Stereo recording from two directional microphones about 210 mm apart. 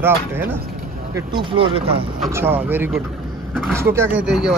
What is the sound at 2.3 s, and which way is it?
Speech, 10° right (ahead or behind).